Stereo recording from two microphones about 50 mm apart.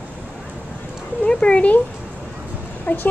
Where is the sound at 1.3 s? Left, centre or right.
Centre.